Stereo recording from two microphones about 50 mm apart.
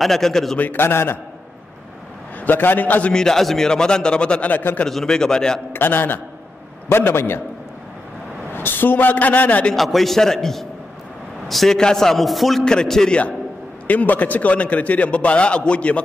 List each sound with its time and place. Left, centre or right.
0.0 s a man's voice: centre
0.7 s a man's voice: left
2.4 s a woman's voice: left
3.1 s a man's voice: centre
4.5 s a woman's voice: left
4.8 s a man's voice: centre
5.7 s a man's voice: left
8.5 s a woman's voice: left
9.8 s a man's voice: centre
12.6 s a man's voice: centre
13.8 s a man's voice: left